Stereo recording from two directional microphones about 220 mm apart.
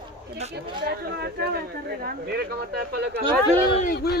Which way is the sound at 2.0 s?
45° right (ahead or behind).